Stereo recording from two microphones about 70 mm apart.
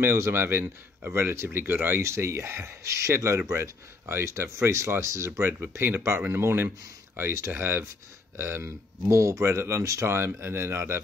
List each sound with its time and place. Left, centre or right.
0.0 s speech: right
9.1 s speech: right